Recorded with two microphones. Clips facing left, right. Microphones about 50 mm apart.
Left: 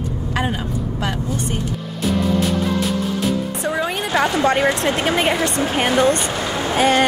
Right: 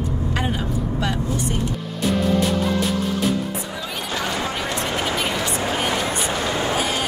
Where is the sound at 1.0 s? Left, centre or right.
Left.